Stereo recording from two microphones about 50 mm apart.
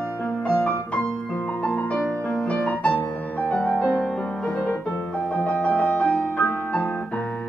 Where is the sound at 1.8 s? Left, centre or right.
Left.